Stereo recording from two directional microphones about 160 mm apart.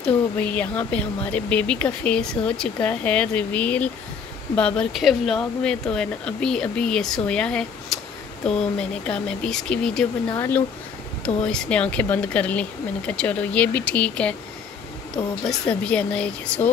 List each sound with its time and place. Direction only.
0.0 s speech: 10° left (ahead or behind)
10.3 s speech: 15° left (ahead or behind)
15.7 s speech: 5° left (ahead or behind)